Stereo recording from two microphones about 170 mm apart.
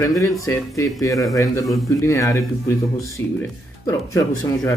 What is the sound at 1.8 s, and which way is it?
Speech, 20° left (ahead or behind).